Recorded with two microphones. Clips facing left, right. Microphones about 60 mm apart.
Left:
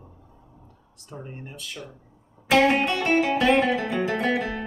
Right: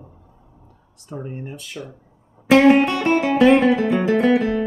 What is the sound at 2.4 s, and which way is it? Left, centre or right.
Music, right.